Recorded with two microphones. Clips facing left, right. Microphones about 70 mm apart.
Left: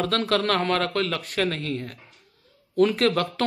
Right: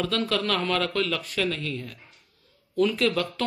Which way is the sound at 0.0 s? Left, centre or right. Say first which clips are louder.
Left 3 dB; left.